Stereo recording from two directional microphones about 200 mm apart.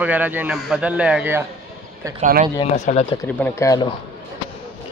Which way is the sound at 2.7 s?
35° left (ahead or behind).